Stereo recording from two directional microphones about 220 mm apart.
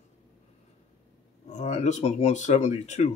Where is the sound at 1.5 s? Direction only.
30° left (ahead or behind).